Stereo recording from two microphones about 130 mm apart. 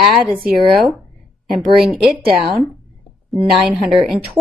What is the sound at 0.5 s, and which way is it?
Speech, centre (ahead or behind).